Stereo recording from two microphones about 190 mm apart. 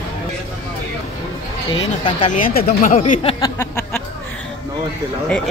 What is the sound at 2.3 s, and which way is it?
Speech, 50° left (ahead or behind).